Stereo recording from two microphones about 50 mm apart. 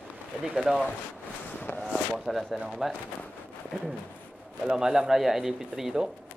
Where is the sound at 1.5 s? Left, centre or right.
Left.